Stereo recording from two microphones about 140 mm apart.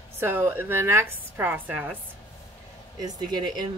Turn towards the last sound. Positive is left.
turn(degrees=-30)  # may be behind; listen again after turning